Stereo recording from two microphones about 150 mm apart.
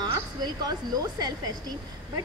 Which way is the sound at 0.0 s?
25° right (ahead or behind).